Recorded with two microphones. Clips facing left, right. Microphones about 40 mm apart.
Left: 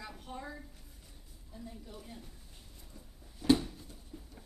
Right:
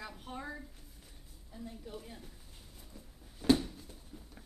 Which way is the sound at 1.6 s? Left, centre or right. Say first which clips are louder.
Right 3 dB; centre.